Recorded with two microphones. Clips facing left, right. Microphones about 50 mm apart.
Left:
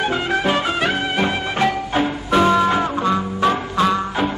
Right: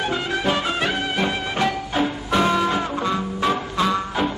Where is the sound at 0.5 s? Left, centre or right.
Centre.